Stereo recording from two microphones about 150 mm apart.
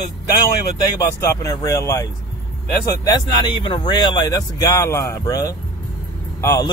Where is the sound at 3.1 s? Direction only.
30° left (ahead or behind).